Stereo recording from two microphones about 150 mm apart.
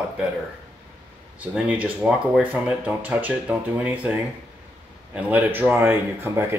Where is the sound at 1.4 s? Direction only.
10° right (ahead or behind).